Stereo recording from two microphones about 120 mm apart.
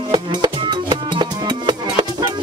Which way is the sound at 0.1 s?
40° right (ahead or behind).